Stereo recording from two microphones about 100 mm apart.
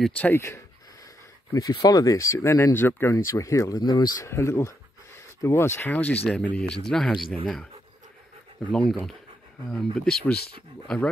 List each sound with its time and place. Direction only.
0.2 s speech: 25° left (ahead or behind)
1.5 s speech: 40° left (ahead or behind)
4.2 s speech: 30° left (ahead or behind); by 7.2 s 5° left (ahead or behind)
8.6 s speech: 5° left (ahead or behind)